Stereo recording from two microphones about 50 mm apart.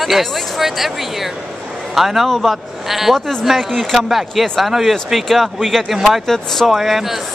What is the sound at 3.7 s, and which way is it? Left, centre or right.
Speech, centre.